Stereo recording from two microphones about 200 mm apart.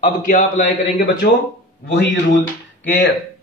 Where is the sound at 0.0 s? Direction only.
40° left (ahead or behind).